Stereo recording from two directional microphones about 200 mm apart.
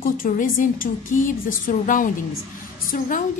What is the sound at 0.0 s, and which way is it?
A woman's voice, 45° left (ahead or behind).